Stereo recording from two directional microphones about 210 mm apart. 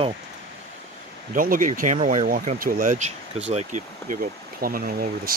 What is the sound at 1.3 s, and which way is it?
Speech, 40° right (ahead or behind).